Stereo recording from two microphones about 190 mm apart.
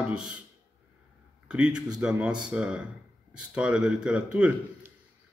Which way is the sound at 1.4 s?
5° right (ahead or behind).